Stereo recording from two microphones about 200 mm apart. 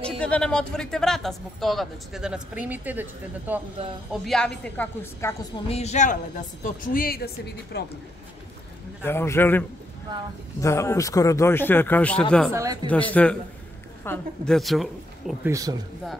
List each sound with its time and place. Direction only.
0.2 s a man's voice: 5° left (ahead or behind)
5.7 s a woman's voice: 35° left (ahead or behind); by 7.8 s 55° left (ahead or behind)
9.0 s speech: 10° left (ahead or behind)
12.5 s speech: 15° right (ahead or behind)
12.9 s a man's voice: 5° left (ahead or behind)
15.4 s speech: 15° right (ahead or behind)